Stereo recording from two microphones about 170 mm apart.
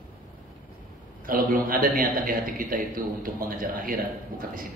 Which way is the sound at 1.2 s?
55° right (ahead or behind).